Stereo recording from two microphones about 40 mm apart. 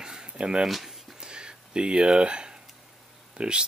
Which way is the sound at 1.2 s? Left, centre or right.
Right.